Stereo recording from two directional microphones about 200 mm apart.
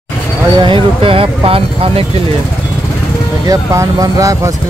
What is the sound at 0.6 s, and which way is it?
Speech, 25° right (ahead or behind).